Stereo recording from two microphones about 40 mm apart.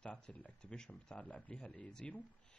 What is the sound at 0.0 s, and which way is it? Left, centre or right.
Speech, left.